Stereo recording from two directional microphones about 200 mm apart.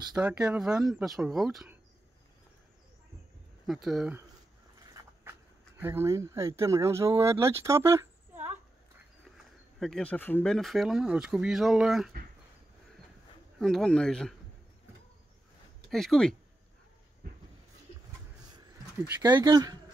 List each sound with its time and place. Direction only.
0.1 s speech: 5° right (ahead or behind)
3.6 s speech: centre (ahead or behind)
5.8 s speech: 10° right (ahead or behind)
9.8 s speech: centre (ahead or behind)
13.6 s speech: centre (ahead or behind)
15.9 s speech: centre (ahead or behind)
19.2 s speech: 20° right (ahead or behind)